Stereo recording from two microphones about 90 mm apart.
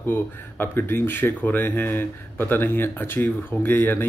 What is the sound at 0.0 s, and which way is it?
Speech, 25° left (ahead or behind).